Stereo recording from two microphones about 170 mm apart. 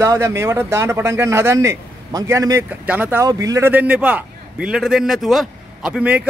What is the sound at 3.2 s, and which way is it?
A man's voice, 20° right (ahead or behind).